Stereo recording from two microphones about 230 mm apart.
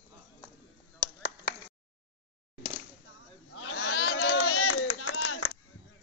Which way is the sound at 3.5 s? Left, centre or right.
Left.